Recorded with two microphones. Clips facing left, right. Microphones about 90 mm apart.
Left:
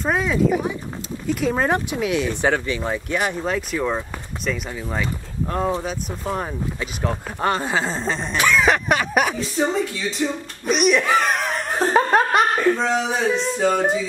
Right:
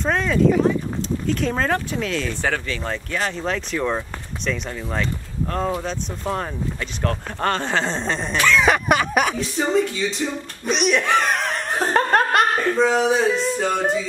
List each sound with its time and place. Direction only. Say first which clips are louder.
0.0 s speech: right 1 dB; 5° left (ahead or behind)